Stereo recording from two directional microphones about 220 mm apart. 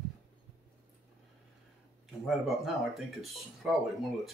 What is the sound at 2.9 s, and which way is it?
Speech, centre (ahead or behind).